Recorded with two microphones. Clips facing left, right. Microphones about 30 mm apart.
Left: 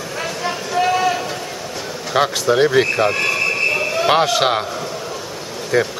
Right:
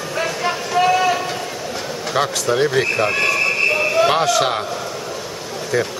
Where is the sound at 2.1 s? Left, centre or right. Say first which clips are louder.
Left 3 dB; centre.